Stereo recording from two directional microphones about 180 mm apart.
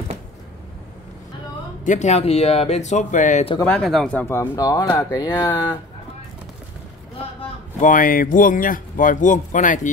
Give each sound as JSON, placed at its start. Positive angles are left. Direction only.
{"t": 1.9, "sound": "speech", "side_deg": 40}
{"t": 3.6, "sound": "speech", "side_deg": 0}
{"t": 7.8, "sound": "speech", "side_deg": 50}